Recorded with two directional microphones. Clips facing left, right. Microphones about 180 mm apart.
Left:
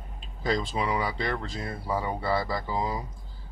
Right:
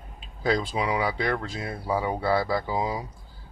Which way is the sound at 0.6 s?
Centre (ahead or behind).